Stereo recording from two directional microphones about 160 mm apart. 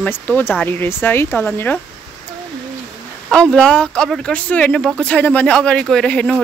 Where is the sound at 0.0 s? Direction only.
10° left (ahead or behind).